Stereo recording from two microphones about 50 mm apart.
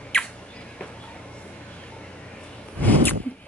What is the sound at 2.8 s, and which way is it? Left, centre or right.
Sneeze, left.